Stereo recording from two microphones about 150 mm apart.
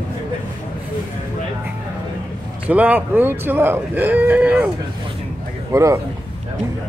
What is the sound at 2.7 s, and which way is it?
Speech, 10° right (ahead or behind).